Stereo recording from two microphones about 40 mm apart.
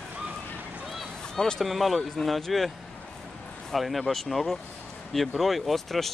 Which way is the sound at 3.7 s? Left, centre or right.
Centre.